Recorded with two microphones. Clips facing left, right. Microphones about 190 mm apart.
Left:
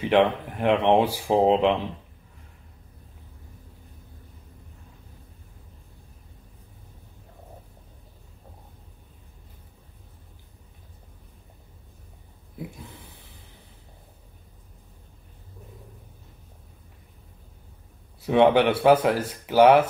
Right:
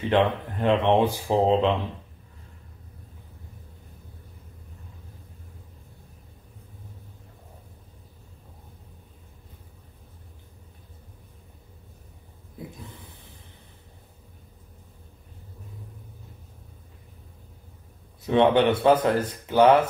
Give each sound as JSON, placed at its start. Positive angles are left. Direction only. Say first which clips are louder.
{"t": 0.0, "sound": "speech", "louder": "left 2 dB", "side_deg": 10}
{"t": 18.2, "sound": "speech", "louder": "left 1 dB", "side_deg": 10}